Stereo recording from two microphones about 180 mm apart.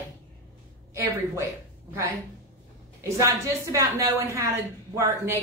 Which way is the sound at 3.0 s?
15° right (ahead or behind).